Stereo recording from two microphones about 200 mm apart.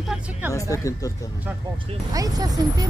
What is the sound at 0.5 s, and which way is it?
Speech, 15° left (ahead or behind).